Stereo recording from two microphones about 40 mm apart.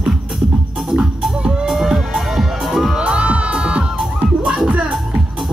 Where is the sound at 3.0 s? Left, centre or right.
Right.